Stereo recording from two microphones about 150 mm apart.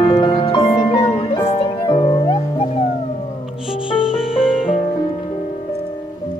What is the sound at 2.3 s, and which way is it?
Music, 45° left (ahead or behind).